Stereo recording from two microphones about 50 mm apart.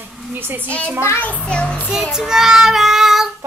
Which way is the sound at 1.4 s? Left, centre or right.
Left.